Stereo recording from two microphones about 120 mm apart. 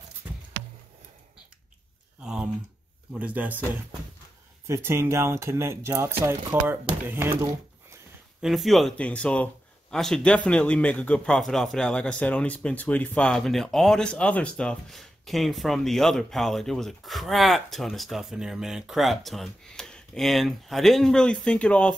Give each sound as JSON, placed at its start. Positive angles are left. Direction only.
{"t": 2.2, "sound": "a sound", "side_deg": -5}
{"t": 3.1, "sound": "speech", "side_deg": -10}
{"t": 4.6, "sound": "speech", "side_deg": -20}
{"t": 8.4, "sound": "a man's voice", "side_deg": 0}